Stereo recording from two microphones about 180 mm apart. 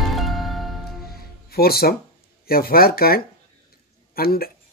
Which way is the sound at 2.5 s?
55° left (ahead or behind).